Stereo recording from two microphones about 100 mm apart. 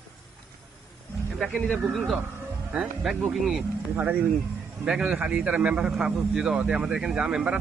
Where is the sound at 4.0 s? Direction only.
20° right (ahead or behind).